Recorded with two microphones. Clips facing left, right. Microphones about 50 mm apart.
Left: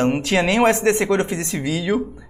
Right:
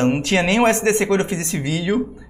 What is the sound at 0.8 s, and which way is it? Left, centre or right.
Speech, centre.